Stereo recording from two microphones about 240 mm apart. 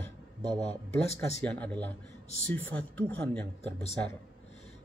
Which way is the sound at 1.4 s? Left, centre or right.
Centre.